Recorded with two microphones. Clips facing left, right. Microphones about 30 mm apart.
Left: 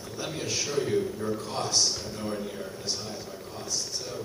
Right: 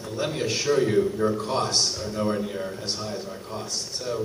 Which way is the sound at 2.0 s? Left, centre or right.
Centre.